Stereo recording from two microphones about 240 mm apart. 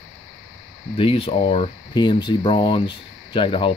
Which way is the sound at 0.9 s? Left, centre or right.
Left.